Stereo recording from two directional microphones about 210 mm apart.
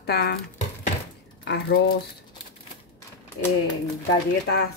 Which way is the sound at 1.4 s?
55° left (ahead or behind).